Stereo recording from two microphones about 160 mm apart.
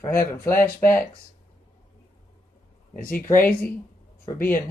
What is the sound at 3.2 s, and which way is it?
Speech, 15° left (ahead or behind).